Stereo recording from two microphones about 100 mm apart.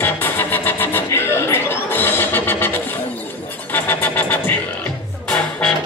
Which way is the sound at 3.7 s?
15° left (ahead or behind).